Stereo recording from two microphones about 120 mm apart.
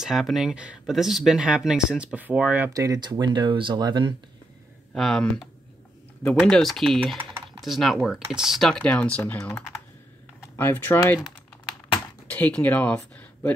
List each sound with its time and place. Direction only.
0.0 s speech: centre (ahead or behind)
2.7 s speech: 30° right (ahead or behind)
4.9 s speech: 5° left (ahead or behind)
12.3 s speech: 10° left (ahead or behind)